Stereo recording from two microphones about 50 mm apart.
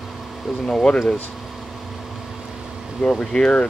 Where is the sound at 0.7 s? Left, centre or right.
Centre.